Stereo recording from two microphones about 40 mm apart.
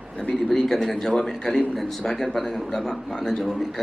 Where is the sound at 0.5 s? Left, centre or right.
Centre.